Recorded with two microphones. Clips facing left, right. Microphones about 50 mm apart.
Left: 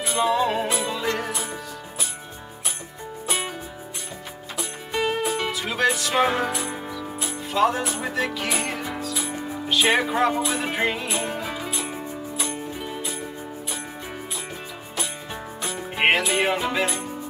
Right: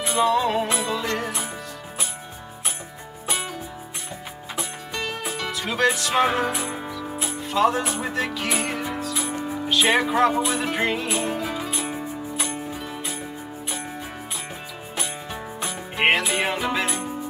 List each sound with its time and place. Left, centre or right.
0.1 s music: centre
4.9 s music: centre
5.5 s music: centre
12.7 s music: centre
15.6 s music: centre